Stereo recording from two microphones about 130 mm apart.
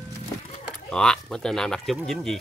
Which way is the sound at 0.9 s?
5° left (ahead or behind).